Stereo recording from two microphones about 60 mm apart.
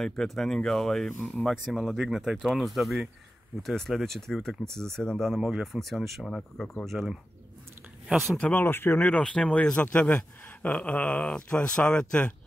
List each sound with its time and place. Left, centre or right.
0.2 s speech: centre
5.3 s speech: centre
8.5 s speech: left
9.2 s speech: centre